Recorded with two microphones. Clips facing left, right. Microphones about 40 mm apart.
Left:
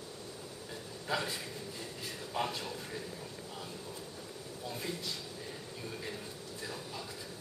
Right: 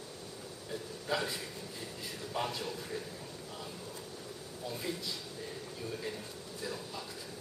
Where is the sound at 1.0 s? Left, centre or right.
Centre.